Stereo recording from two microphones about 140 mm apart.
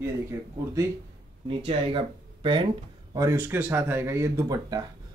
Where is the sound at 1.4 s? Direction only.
40° right (ahead or behind).